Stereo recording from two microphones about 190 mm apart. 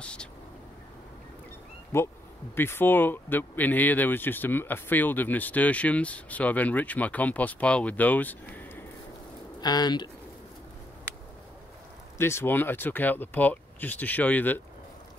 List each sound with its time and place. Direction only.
0.0 s speech: 5° left (ahead or behind)
1.9 s speech: 15° left (ahead or behind)
9.6 s speech: 20° left (ahead or behind)
12.2 s speech: 15° left (ahead or behind)